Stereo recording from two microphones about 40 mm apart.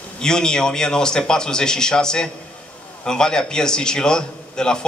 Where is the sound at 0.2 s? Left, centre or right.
Centre.